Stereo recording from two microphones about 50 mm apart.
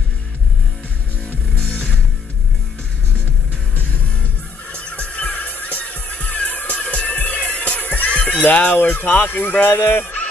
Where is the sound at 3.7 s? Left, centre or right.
Left.